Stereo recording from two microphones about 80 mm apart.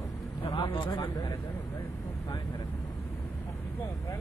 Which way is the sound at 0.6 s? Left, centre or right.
Left.